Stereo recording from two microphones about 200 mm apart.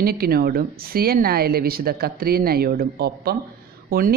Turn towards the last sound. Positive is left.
turn(degrees=-50)  # may be behind; listen again after turning